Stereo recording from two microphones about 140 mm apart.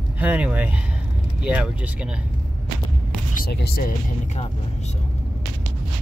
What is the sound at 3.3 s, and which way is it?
Speech, 90° left.